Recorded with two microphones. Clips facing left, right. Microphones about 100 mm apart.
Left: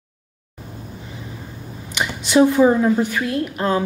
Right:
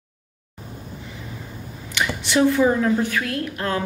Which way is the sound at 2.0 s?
20° left (ahead or behind).